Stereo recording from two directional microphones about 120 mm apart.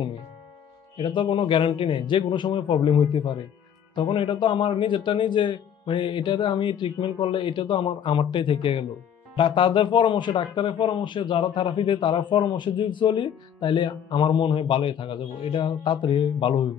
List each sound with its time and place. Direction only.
0.9 s a man's voice: 40° left (ahead or behind)